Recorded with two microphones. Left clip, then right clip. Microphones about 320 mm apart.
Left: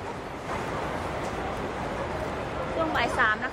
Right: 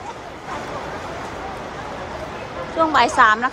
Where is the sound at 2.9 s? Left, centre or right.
Centre.